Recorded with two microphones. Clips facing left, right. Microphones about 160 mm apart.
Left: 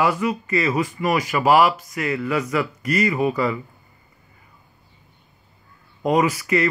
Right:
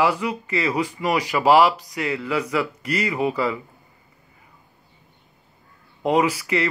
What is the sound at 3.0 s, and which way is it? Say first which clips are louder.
Speech: left 1 dB; 10° right (ahead or behind).